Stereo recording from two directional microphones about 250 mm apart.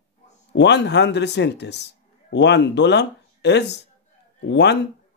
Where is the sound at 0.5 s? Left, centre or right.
Left.